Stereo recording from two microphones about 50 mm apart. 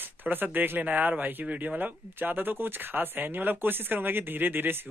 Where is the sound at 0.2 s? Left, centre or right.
Right.